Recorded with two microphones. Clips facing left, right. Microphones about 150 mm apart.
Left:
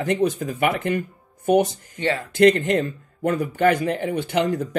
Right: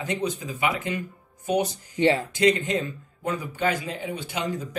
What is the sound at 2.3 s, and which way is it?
A man's voice, 60° left (ahead or behind).